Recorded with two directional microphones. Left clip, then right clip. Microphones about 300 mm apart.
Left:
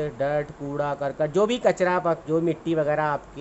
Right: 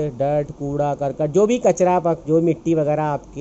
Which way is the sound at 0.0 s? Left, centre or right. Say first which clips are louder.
Right 5 dB; centre.